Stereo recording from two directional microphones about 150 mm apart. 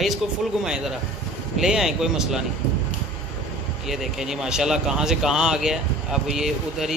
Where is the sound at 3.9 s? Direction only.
5° right (ahead or behind).